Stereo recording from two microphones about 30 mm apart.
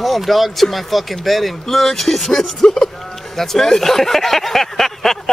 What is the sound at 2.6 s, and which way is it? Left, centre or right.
A man's voice, left.